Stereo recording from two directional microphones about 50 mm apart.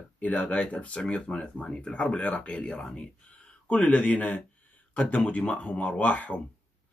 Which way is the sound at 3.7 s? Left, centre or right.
Left.